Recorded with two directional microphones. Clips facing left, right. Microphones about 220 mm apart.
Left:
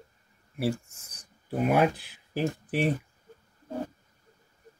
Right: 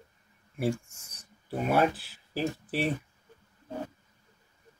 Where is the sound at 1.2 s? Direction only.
15° left (ahead or behind).